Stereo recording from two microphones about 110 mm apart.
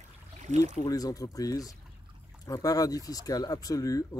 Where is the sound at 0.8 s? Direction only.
35° left (ahead or behind).